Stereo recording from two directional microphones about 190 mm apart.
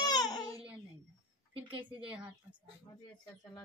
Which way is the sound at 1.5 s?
30° right (ahead or behind).